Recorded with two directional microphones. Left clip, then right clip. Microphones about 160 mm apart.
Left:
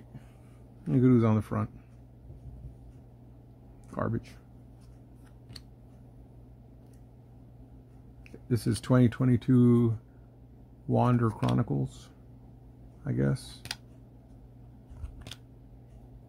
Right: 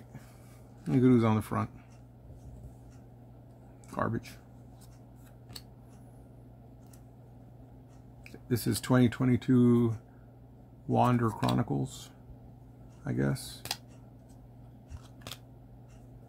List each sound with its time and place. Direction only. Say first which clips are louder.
0.8 s speech: even; 10° left (ahead or behind)
3.9 s speech: right 1 dB; 15° left (ahead or behind)
8.5 s speech: left 1 dB; 15° left (ahead or behind)
11.2 s speech: even; 35° left (ahead or behind)
11.5 s speech: even; 15° left (ahead or behind)